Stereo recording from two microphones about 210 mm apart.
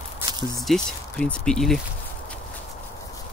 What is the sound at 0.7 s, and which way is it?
Speech, 5° left (ahead or behind).